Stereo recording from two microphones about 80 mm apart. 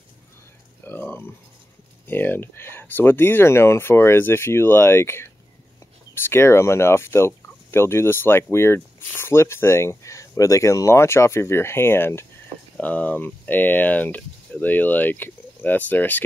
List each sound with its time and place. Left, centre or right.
0.8 s a sound: left
2.0 s speech: left
12.7 s speech: centre